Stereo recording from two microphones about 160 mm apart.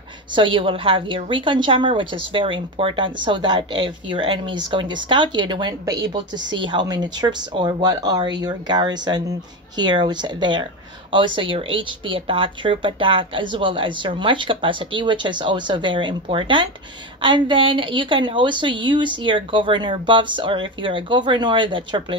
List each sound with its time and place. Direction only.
0.3 s a woman's voice: 30° right (ahead or behind)